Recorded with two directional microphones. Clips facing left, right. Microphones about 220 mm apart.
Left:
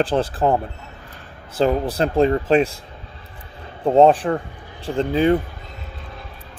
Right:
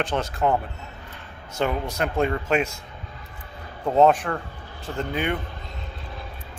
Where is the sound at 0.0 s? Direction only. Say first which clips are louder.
Left 5 dB; 30° left (ahead or behind).